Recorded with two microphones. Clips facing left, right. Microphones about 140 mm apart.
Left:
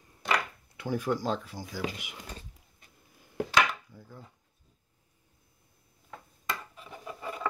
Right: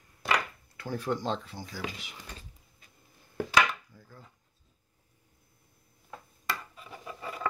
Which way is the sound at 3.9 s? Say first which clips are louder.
Left 4 dB; 15° left (ahead or behind).